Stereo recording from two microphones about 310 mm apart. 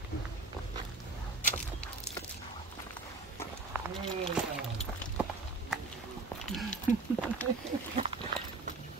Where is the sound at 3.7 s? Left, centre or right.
Centre.